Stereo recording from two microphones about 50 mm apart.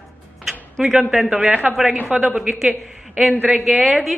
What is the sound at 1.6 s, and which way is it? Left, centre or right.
Speech, right.